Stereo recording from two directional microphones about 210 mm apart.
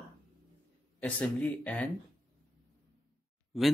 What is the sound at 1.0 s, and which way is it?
Speech, 5° left (ahead or behind).